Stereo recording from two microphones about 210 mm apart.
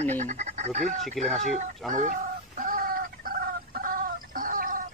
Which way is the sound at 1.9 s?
35° right (ahead or behind).